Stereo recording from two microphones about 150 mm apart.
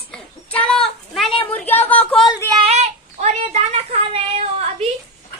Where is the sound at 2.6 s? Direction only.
45° right (ahead or behind).